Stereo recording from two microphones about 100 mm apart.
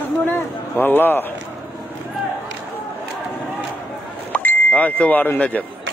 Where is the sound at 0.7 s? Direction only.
20° left (ahead or behind).